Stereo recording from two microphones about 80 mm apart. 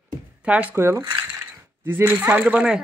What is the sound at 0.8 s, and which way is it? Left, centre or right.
Speech, right.